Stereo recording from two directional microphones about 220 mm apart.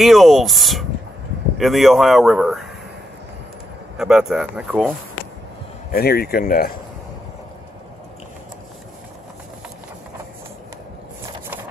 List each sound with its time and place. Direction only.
0.0 s speech: centre (ahead or behind)
4.0 s speech: centre (ahead or behind)
5.9 s speech: 45° left (ahead or behind)